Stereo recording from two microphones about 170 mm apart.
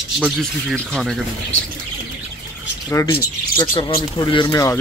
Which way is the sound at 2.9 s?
20° left (ahead or behind).